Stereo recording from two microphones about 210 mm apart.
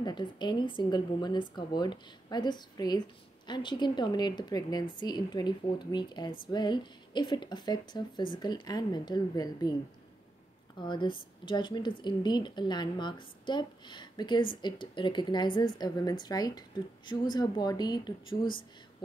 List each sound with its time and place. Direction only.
0.0 s speech: 20° left (ahead or behind)
10.8 s speech: 20° left (ahead or behind)